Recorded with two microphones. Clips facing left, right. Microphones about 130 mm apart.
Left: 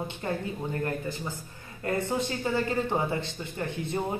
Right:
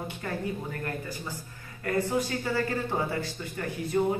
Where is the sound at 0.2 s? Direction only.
25° left (ahead or behind).